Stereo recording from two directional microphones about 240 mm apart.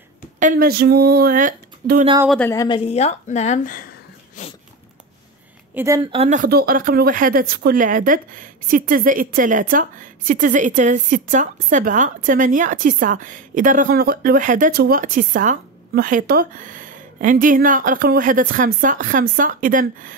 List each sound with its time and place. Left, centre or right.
0.4 s speech: right
2.2 s a woman's voice: centre; by 3.8 s left
4.4 s a sound: left
5.8 s speech: centre; by 20.2 s right